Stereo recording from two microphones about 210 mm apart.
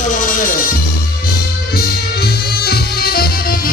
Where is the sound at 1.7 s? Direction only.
50° left (ahead or behind).